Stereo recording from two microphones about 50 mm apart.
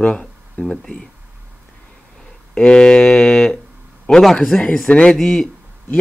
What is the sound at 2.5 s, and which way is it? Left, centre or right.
Speech, centre.